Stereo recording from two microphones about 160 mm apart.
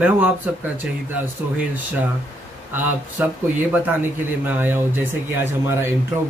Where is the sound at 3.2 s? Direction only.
10° right (ahead or behind).